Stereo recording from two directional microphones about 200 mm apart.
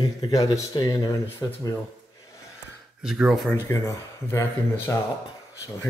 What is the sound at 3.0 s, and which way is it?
Speech, centre (ahead or behind).